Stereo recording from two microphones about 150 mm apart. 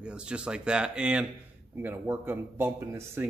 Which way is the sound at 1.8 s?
15° right (ahead or behind).